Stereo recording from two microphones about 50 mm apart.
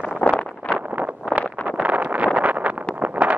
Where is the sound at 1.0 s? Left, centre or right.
Right.